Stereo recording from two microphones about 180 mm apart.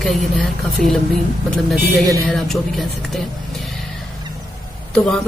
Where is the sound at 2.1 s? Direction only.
Centre (ahead or behind).